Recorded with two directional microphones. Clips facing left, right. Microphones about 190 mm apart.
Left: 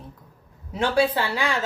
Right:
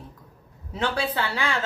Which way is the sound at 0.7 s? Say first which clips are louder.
Left 5 dB; 10° left (ahead or behind).